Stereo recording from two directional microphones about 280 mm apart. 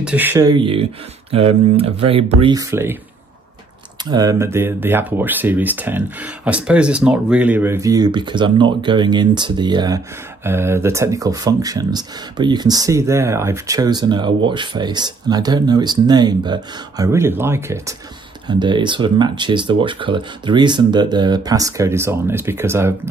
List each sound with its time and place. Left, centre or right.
0.0 s speech: centre
4.0 s speech: centre